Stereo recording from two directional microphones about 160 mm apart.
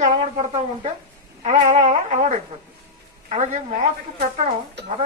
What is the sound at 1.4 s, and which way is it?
A woman's voice, 45° right (ahead or behind).